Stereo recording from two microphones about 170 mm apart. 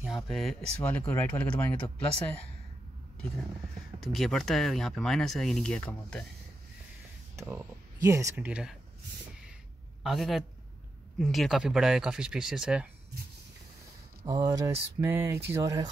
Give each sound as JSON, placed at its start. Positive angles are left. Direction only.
{"t": 0.0, "sound": "speech", "side_deg": 0}
{"t": 4.0, "sound": "speech", "side_deg": 0}
{"t": 7.3, "sound": "speech", "side_deg": -15}
{"t": 8.5, "sound": "speech", "side_deg": -5}
{"t": 10.0, "sound": "speech", "side_deg": 0}
{"t": 14.2, "sound": "speech", "side_deg": -20}
{"t": 15.0, "sound": "speech", "side_deg": -10}